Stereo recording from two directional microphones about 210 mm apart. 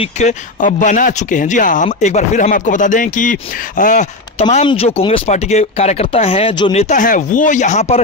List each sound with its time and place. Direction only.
0.0 s speech: 35° left (ahead or behind)